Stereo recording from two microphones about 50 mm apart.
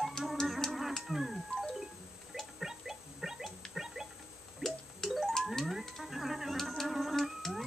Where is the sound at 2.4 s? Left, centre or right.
Centre.